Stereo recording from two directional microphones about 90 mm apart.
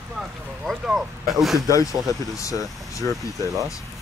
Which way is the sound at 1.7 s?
40° left (ahead or behind).